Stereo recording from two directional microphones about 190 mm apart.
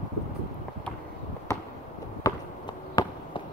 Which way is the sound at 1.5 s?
15° left (ahead or behind).